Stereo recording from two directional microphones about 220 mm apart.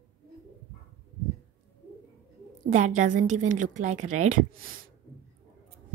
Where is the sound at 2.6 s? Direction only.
35° right (ahead or behind).